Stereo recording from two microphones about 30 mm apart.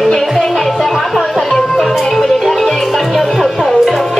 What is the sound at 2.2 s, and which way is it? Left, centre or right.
Music, centre.